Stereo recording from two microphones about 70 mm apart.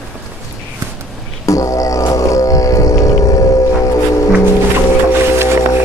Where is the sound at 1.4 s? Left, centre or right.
Left.